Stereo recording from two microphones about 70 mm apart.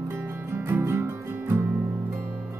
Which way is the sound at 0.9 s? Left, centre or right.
Right.